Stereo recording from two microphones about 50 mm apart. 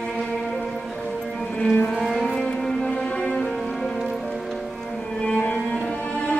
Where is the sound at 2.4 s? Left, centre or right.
Centre.